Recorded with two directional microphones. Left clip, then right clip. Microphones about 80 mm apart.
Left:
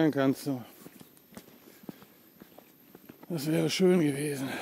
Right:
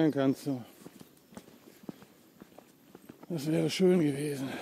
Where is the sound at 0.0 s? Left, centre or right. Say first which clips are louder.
Left 1 dB; centre.